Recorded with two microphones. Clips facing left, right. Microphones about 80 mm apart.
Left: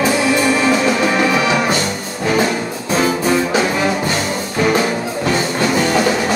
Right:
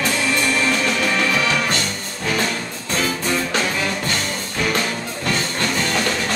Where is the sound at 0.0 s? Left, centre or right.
Centre.